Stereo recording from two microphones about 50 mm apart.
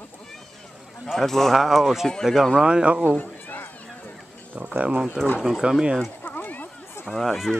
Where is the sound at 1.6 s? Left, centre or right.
Centre.